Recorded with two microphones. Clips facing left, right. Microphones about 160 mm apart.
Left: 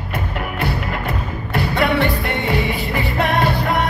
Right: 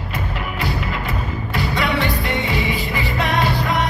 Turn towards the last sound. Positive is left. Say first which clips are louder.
# left 2 dB
turn(degrees=55)  # may be behind; listen again after turning